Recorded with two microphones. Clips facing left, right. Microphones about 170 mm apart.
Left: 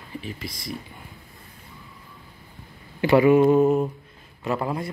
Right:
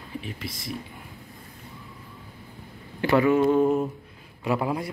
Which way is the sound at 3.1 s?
15° left (ahead or behind).